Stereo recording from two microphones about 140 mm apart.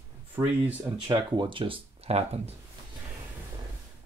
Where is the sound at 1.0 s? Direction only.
35° right (ahead or behind).